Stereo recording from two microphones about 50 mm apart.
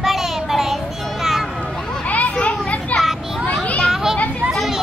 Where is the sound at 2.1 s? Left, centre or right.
Left.